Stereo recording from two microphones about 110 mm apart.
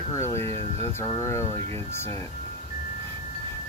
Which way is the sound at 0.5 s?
60° right (ahead or behind).